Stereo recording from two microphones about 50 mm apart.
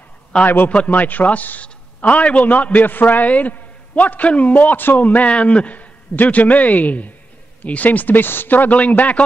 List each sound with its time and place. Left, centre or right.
0.7 s a man's voice: left